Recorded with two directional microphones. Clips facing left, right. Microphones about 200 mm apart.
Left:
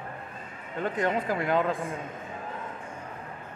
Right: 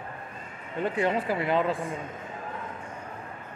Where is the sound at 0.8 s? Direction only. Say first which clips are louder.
Right 1 dB; 10° right (ahead or behind).